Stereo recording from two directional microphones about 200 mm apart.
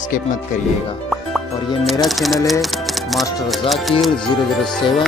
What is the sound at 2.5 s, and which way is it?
Music, centre (ahead or behind).